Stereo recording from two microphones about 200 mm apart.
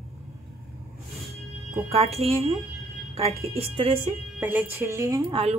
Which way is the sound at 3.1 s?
30° right (ahead or behind).